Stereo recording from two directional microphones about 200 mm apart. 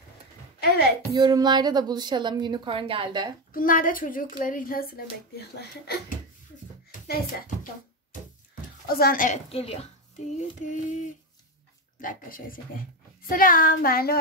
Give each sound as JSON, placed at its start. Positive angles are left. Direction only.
{"t": 0.6, "sound": "a sound", "side_deg": 50}
{"t": 1.1, "sound": "a woman's voice", "side_deg": -20}
{"t": 3.5, "sound": "a child's voice", "side_deg": 45}
{"t": 6.9, "sound": "a child's voice", "side_deg": 45}
{"t": 8.5, "sound": "a sound", "side_deg": 50}
{"t": 9.5, "sound": "a child's voice", "side_deg": 30}